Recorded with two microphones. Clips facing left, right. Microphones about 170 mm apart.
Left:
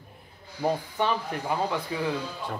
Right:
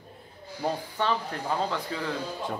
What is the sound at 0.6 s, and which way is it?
Speech, 15° left (ahead or behind).